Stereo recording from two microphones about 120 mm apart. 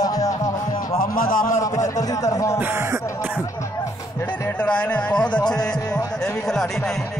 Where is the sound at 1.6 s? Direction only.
25° left (ahead or behind).